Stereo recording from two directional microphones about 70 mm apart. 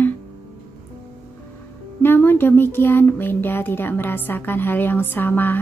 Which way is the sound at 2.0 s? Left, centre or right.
Left.